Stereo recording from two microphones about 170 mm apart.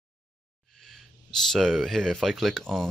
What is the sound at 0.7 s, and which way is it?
Speech, centre (ahead or behind).